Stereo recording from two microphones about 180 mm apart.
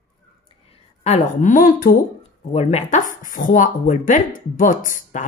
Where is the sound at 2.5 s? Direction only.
40° left (ahead or behind).